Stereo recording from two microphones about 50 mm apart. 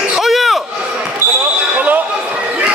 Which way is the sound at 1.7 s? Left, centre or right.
Right.